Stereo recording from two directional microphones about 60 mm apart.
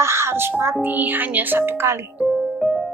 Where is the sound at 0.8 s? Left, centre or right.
Right.